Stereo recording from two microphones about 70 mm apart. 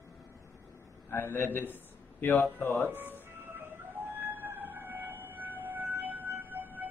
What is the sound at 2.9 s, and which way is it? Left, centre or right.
Music, right.